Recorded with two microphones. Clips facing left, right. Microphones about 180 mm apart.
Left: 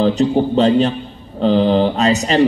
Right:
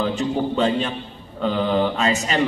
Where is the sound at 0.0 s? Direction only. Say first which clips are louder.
Left 7 dB; 40° left (ahead or behind).